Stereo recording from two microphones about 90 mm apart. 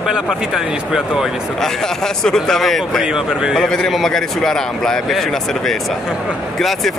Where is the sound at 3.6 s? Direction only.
5° left (ahead or behind).